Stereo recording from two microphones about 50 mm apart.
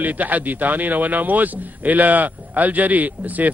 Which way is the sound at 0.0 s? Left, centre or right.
Right.